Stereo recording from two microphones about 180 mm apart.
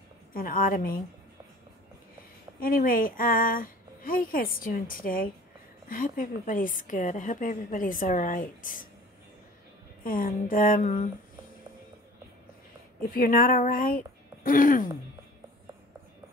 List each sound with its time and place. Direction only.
0.3 s a woman's voice: 50° left (ahead or behind)
2.6 s a woman's voice: 50° left (ahead or behind)
10.0 s a woman's voice: 50° left (ahead or behind)
13.1 s a woman's voice: 50° left (ahead or behind)